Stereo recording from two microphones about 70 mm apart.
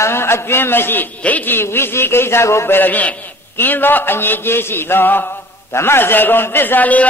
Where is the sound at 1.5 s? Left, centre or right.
Left.